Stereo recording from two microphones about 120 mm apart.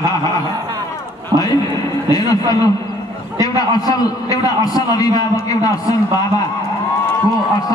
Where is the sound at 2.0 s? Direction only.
35° left (ahead or behind).